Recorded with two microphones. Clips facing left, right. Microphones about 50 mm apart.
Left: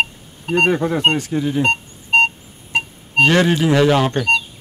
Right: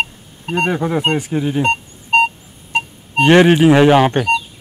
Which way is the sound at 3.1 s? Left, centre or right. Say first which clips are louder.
Right 4 dB; right.